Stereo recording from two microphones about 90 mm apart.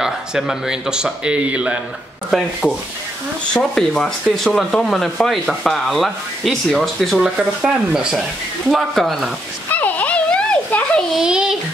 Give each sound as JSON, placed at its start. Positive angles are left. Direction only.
{"t": 0.0, "sound": "speech", "side_deg": -5}
{"t": 2.3, "sound": "speech", "side_deg": -5}
{"t": 3.5, "sound": "speech", "side_deg": 5}
{"t": 9.7, "sound": "a sound", "side_deg": 20}
{"t": 11.1, "sound": "a child's voice", "side_deg": -10}